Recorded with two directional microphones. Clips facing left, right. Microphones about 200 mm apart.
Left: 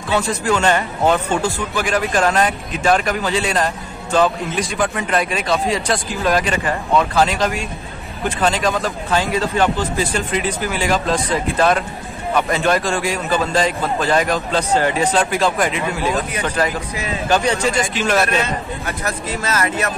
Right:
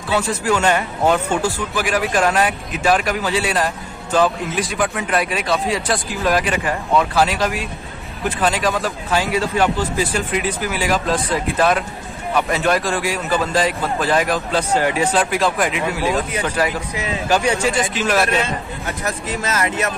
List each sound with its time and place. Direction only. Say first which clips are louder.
0.1 s a man's voice: even; 5° right (ahead or behind)
18.9 s speech: right 1 dB; 20° right (ahead or behind)